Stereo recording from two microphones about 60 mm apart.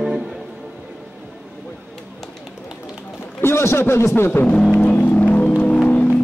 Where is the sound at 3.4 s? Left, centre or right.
Left.